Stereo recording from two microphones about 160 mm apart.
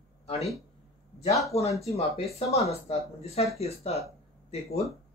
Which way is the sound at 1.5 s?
40° left (ahead or behind).